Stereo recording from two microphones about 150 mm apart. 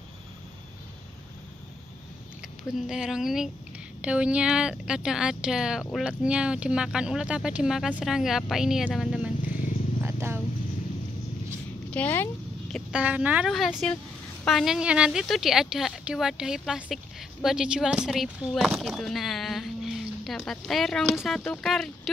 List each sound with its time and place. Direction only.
2.9 s a woman's voice: 5° right (ahead or behind)
9.5 s wild animals: 60° left (ahead or behind)
10.0 s purr: 15° right (ahead or behind)
11.9 s speech: 10° left (ahead or behind)
12.9 s a woman's voice: 10° right (ahead or behind)